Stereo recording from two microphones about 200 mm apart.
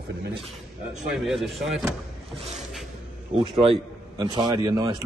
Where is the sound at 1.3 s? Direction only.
Centre (ahead or behind).